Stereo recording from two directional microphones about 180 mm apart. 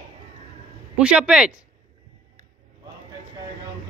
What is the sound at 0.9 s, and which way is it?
Speech, 5° right (ahead or behind).